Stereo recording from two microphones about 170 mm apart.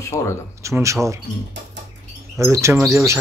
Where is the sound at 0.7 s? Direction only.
15° right (ahead or behind).